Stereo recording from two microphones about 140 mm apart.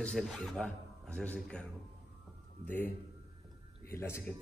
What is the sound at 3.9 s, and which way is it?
Speech, 20° left (ahead or behind).